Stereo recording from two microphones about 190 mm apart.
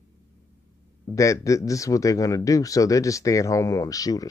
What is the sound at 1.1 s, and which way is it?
Speech, 15° left (ahead or behind).